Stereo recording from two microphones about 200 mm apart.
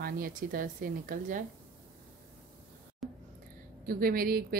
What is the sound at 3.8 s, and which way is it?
Speech, 45° right (ahead or behind).